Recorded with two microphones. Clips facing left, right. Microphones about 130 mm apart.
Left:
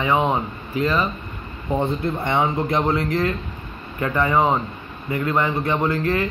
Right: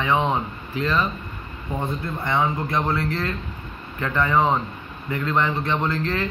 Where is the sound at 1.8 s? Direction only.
25° left (ahead or behind).